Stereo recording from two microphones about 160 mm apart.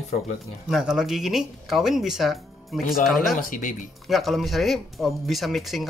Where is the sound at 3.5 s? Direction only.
55° left (ahead or behind).